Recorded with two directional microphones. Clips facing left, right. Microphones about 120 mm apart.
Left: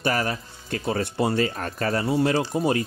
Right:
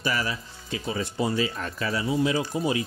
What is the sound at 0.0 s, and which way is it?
Speech, 50° left (ahead or behind).